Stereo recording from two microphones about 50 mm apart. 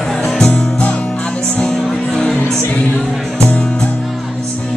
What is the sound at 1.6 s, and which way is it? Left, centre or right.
Music, centre.